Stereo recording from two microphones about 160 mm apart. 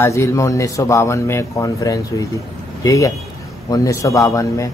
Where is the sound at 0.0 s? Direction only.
20° left (ahead or behind).